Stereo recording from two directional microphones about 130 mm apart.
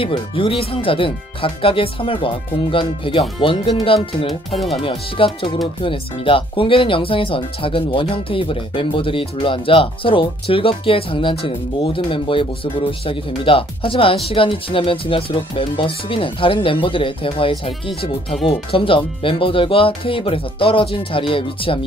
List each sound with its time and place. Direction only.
0.0 s speech: 40° left (ahead or behind)